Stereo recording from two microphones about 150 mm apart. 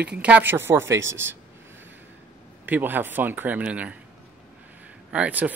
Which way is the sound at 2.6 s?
10° right (ahead or behind).